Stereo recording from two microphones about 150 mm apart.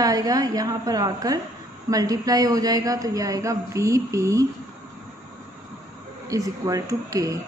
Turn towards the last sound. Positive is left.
turn(degrees=-20)  # may be behind; listen again after turning